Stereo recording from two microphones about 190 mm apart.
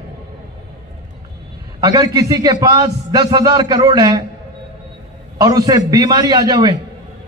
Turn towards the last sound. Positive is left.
turn(degrees=-20)  # may be behind; listen again after turning